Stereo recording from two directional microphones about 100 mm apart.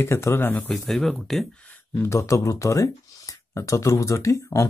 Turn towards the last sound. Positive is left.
turn(degrees=30)  # may be behind; listen again after turning